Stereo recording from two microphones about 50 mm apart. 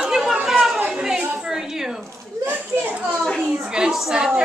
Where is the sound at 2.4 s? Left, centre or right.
Right.